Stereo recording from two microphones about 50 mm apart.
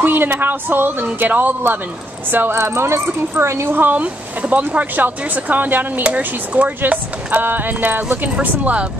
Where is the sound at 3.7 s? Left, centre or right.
Right.